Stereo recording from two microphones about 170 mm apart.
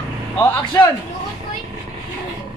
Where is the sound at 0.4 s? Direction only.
15° left (ahead or behind).